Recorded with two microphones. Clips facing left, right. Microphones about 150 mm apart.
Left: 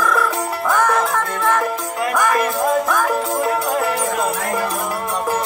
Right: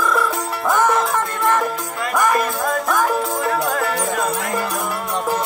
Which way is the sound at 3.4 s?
20° left (ahead or behind).